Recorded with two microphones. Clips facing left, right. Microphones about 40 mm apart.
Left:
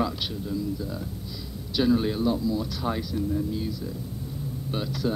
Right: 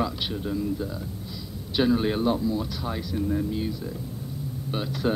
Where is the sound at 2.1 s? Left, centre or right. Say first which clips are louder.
Right 1 dB; right.